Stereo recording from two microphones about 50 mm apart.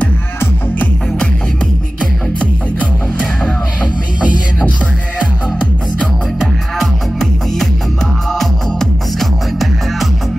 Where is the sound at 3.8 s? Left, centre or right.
Right.